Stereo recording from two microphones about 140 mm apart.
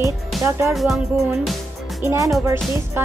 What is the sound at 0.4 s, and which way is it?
Speech, 20° right (ahead or behind).